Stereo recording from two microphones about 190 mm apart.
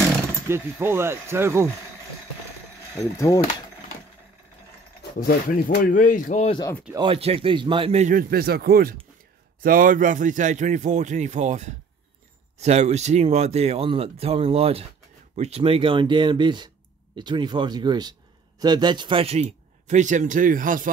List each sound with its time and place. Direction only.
0.5 s speech: 10° right (ahead or behind)
3.0 s speech: 15° left (ahead or behind)
5.2 s speech: 55° left (ahead or behind); by 6.6 s 35° left (ahead or behind)
7.0 s a man's voice: 30° right (ahead or behind); by 20.9 s 45° right (ahead or behind)